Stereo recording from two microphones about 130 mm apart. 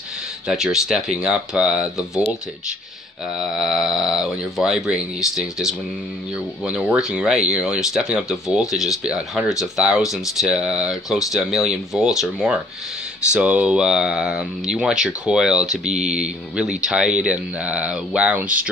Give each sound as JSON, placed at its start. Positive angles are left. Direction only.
{"t": 0.5, "sound": "speech", "side_deg": -5}
{"t": 3.3, "sound": "speech", "side_deg": 0}
{"t": 15.9, "sound": "mantra", "side_deg": -60}
{"t": 16.8, "sound": "speech", "side_deg": -5}